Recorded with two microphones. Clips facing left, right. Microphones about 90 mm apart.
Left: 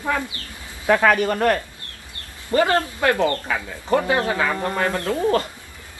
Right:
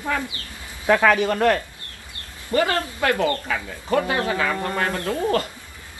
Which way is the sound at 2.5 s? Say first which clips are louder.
Left 3 dB; 30° left (ahead or behind).